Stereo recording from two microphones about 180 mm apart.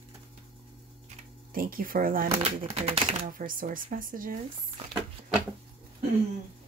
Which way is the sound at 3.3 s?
50° right (ahead or behind).